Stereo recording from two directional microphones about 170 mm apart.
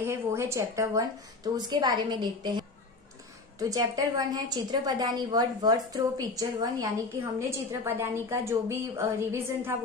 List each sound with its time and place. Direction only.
0.0 s a woman's voice: 15° right (ahead or behind)